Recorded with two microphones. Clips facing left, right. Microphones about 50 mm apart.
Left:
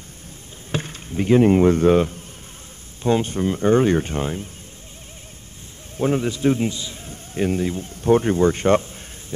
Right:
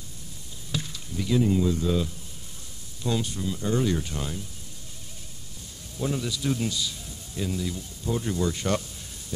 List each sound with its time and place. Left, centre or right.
0.7 s speech: left
3.0 s speech: left
5.9 s speech: left